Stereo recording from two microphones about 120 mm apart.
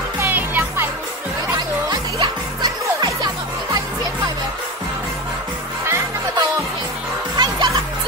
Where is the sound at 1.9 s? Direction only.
35° right (ahead or behind).